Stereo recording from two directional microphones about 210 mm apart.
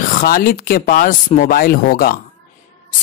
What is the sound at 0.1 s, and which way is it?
Speech, 45° left (ahead or behind).